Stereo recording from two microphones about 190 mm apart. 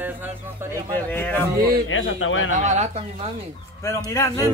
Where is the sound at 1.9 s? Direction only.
90° left.